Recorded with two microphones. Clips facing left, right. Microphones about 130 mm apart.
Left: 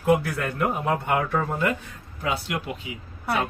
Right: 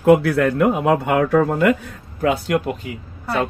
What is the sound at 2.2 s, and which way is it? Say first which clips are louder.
Speech: right 9 dB; 55° right (ahead or behind).